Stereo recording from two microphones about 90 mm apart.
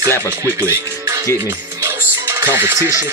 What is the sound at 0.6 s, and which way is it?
Music, 30° right (ahead or behind).